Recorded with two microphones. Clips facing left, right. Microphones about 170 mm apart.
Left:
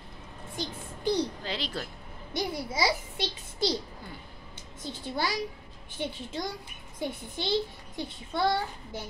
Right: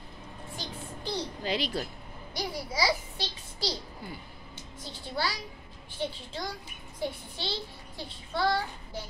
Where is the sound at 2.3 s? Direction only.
20° left (ahead or behind).